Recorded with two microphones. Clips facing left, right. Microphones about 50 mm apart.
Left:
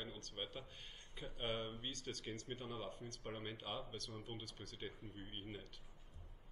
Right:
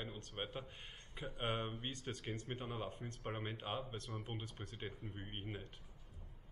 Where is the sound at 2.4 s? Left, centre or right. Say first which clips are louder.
Right 2 dB; right.